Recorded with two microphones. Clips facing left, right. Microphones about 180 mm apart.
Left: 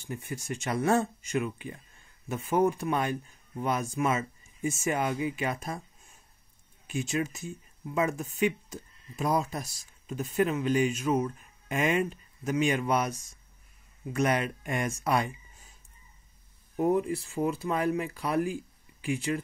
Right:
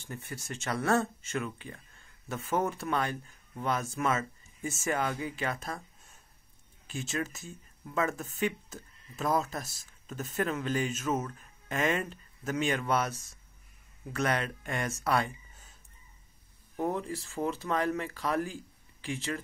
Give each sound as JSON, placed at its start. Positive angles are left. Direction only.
{"t": 0.1, "sound": "speech", "side_deg": 15}
{"t": 4.1, "sound": "a sound", "side_deg": 15}
{"t": 4.8, "sound": "speech", "side_deg": 20}
{"t": 6.9, "sound": "speech", "side_deg": 15}
{"t": 14.1, "sound": "speech", "side_deg": 15}
{"t": 16.7, "sound": "speech", "side_deg": 15}